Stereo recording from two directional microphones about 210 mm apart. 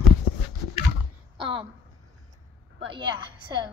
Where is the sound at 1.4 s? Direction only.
25° right (ahead or behind).